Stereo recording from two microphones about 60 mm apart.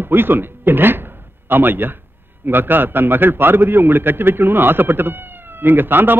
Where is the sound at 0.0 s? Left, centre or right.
Right.